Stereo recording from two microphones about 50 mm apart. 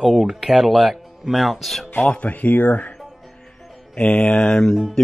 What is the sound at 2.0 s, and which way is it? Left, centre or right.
Speech, left.